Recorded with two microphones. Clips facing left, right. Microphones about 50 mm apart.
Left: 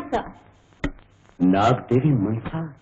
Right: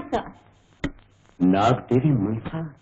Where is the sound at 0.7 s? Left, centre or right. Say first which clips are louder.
Left 1 dB; centre.